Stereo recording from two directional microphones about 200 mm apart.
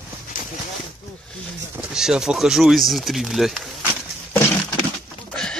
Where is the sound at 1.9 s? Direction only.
5° right (ahead or behind).